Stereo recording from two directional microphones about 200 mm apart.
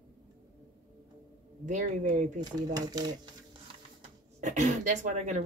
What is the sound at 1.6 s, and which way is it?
Speech, 40° right (ahead or behind).